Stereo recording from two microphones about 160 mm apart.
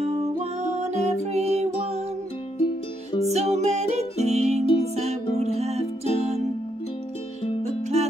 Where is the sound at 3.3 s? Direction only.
45° right (ahead or behind).